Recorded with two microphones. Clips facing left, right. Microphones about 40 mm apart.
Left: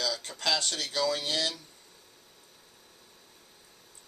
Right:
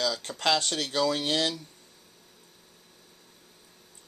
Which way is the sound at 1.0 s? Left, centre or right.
Right.